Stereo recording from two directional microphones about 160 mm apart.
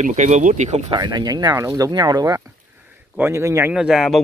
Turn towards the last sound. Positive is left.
turn(degrees=0)  # may be behind; listen again after turning